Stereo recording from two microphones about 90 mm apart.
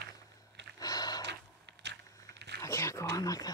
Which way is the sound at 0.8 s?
45° left (ahead or behind).